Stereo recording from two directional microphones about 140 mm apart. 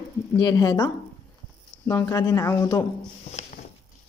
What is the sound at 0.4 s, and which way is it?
Speech, 30° left (ahead or behind).